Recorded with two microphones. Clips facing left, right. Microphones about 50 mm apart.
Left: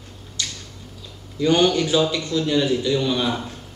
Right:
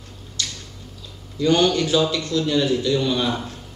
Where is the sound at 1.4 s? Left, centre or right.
Centre.